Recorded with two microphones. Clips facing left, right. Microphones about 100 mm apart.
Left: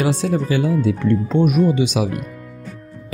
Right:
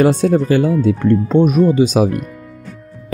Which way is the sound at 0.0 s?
45° right (ahead or behind).